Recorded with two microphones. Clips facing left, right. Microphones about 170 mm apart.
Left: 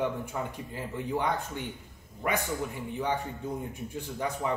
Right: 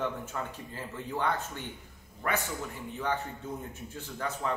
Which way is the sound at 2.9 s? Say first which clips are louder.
Left 1 dB; 15° left (ahead or behind).